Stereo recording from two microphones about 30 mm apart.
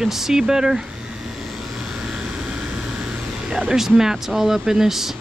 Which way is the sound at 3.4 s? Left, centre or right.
Centre.